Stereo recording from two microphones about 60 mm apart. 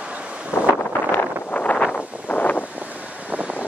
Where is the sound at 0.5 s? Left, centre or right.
Left.